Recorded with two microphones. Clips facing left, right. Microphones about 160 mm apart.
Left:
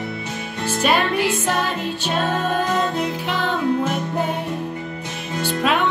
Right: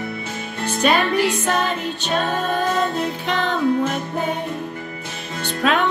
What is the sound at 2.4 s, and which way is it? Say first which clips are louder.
Music: even; 10° left (ahead or behind).